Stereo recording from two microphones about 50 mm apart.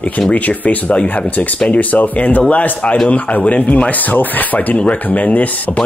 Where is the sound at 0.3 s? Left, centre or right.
Left.